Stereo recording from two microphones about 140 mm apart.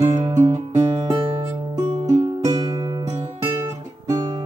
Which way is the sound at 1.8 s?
55° right (ahead or behind).